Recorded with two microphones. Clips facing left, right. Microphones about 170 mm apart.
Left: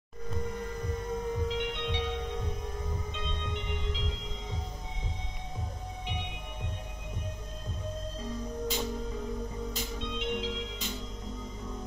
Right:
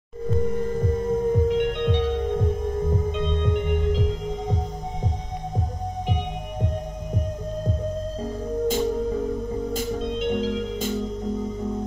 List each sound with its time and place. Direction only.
0.6 s music: 40° right (ahead or behind)
8.2 s music: 50° right (ahead or behind)